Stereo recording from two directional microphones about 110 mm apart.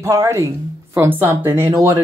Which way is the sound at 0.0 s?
25° right (ahead or behind).